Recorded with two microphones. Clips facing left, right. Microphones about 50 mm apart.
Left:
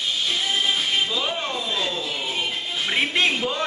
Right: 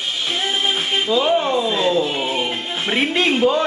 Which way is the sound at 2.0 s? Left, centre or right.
Right.